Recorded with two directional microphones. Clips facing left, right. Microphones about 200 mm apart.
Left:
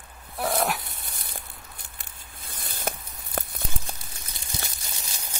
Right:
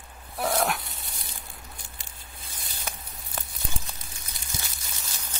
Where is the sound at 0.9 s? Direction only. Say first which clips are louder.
Left 2 dB; 55° left (ahead or behind).